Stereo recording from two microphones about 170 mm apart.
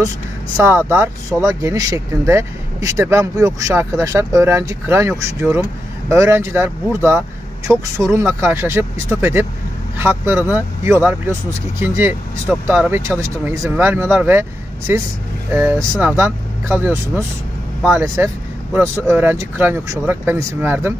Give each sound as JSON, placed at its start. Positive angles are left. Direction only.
{"t": 0.6, "sound": "speech", "side_deg": -15}